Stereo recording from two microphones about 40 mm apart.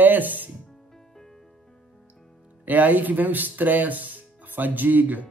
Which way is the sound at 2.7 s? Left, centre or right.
Right.